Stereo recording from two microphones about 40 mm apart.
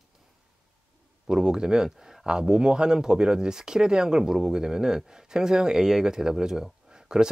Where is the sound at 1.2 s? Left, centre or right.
Centre.